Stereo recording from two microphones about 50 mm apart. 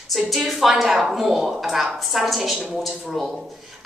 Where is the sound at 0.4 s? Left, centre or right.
Centre.